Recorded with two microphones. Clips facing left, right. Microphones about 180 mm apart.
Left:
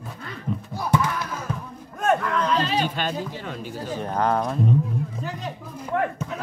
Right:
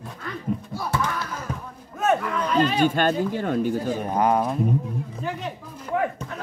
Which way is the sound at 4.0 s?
10° right (ahead or behind).